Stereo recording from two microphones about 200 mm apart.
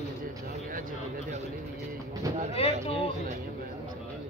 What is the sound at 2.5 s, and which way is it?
Speech, 30° left (ahead or behind).